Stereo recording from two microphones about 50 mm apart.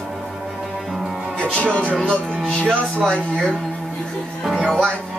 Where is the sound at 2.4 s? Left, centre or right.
Centre.